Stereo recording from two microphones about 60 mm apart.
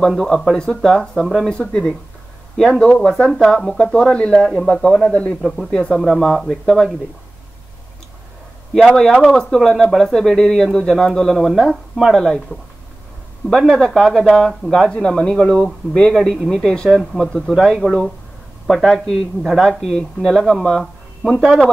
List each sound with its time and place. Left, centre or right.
0.1 s speech: centre
1.5 s a man's voice: centre
6.0 s speech: centre
8.7 s speech: centre